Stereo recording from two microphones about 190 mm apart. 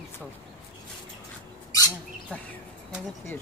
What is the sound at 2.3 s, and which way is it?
Speech, 10° left (ahead or behind).